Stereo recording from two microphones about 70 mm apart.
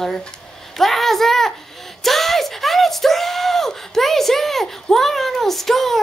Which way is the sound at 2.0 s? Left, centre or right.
Centre.